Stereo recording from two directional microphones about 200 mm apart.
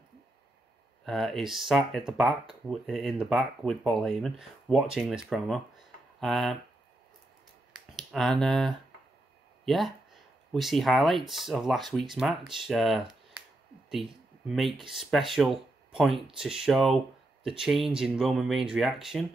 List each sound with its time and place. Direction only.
1.0 s speech: centre (ahead or behind)
8.1 s speech: centre (ahead or behind)
14.5 s speech: centre (ahead or behind)